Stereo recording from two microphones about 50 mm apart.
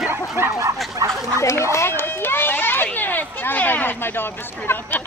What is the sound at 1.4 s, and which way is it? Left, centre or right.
Speech, left.